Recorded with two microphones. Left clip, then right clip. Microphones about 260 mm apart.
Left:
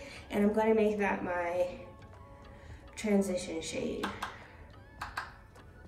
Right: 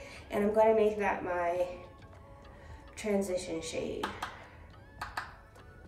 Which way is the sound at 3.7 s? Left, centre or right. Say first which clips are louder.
Left 1 dB; right.